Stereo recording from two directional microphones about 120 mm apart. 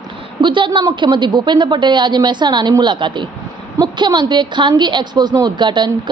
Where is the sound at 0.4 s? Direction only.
40° right (ahead or behind).